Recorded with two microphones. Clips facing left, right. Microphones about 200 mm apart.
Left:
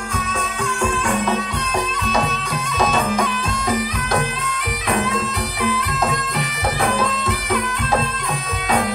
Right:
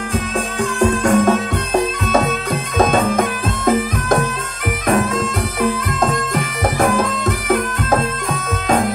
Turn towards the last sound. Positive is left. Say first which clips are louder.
# right 4 dB
turn(degrees=-45)  # may be behind; listen again after turning